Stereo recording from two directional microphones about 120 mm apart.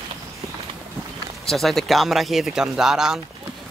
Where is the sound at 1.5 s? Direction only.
5° left (ahead or behind).